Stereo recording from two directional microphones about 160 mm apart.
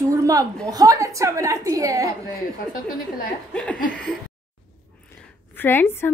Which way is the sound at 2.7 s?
60° left (ahead or behind).